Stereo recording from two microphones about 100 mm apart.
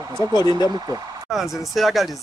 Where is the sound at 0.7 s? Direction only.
40° right (ahead or behind).